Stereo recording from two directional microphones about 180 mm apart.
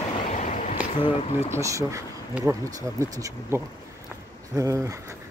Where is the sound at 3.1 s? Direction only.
20° right (ahead or behind).